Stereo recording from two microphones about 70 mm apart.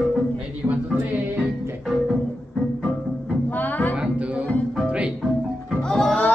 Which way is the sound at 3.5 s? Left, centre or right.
Left.